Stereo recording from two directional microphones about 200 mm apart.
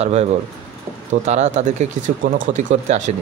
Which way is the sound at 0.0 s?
30° right (ahead or behind).